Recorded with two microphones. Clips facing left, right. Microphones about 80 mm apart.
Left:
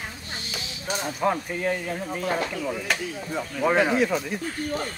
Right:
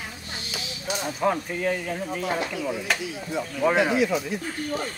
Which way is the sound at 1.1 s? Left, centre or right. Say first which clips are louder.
Even; centre.